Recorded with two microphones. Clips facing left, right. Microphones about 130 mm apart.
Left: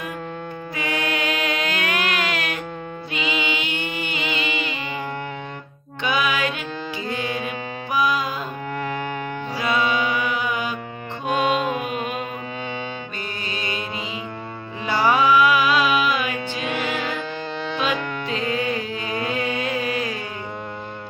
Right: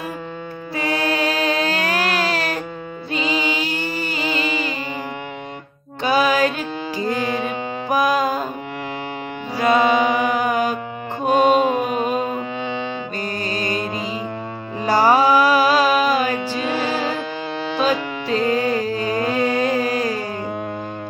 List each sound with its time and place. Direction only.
0.7 s music: 35° right (ahead or behind)
6.0 s music: 35° right (ahead or behind)
9.6 s music: 45° right (ahead or behind)
11.2 s mantra: 45° right (ahead or behind)
13.5 s music: 40° right (ahead or behind)
14.9 s music: 40° right (ahead or behind)